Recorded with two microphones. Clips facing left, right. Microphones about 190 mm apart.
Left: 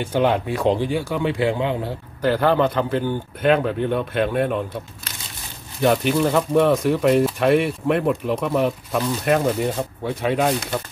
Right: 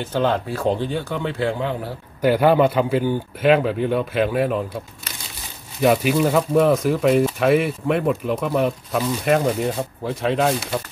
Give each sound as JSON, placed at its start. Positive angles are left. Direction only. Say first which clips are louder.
{"t": 0.0, "sound": "speech", "louder": "left 1 dB", "side_deg": 15}
{"t": 2.2, "sound": "speech", "louder": "right 3 dB", "side_deg": -10}
{"t": 5.8, "sound": "speech", "louder": "right 1 dB", "side_deg": -5}